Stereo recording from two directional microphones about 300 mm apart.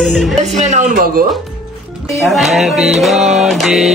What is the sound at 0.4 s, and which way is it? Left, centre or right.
Speech, right.